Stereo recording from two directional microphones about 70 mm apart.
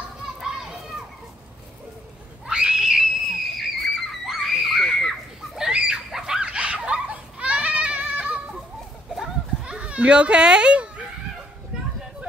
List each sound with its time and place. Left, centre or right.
0.4 s children playing: centre
2.4 s screaming: centre
5.6 s a sound: centre
6.1 s goat: centre
9.7 s children playing: centre